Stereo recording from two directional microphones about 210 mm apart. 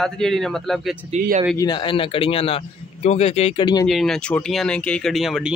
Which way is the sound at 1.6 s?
20° left (ahead or behind).